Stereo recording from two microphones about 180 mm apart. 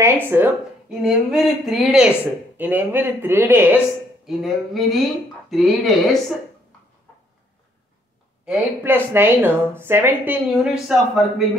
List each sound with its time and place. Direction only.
0.0 s a woman's voice: 10° right (ahead or behind)
4.3 s speech: centre (ahead or behind)
8.5 s a woman's voice: 10° right (ahead or behind)